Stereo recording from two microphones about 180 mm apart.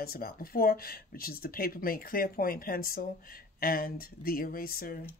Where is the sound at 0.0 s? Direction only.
55° left (ahead or behind).